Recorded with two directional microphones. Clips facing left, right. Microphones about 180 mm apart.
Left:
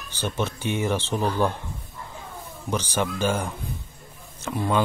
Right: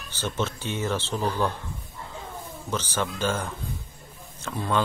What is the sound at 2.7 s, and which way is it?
Speech, 15° left (ahead or behind).